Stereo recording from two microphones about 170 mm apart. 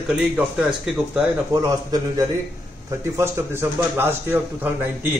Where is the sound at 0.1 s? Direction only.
5° right (ahead or behind).